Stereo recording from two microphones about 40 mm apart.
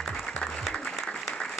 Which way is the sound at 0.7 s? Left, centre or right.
Left.